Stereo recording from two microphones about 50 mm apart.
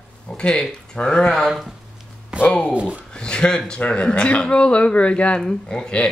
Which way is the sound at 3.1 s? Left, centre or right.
Centre.